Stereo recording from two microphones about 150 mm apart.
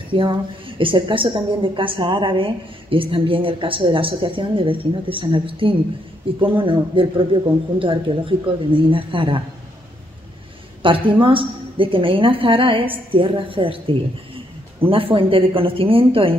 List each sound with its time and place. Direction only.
0.1 s a woman's voice: 35° right (ahead or behind)
10.8 s a woman's voice: 35° right (ahead or behind)